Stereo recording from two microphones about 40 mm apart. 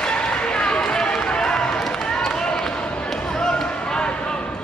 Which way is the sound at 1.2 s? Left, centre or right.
Centre.